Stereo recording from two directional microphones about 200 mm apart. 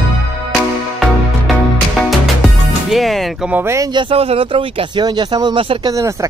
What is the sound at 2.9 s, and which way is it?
Speech, centre (ahead or behind).